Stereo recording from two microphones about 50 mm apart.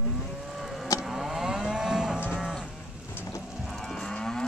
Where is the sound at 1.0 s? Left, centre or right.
Centre.